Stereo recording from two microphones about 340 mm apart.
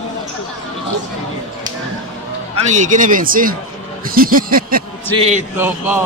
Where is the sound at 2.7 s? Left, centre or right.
Right.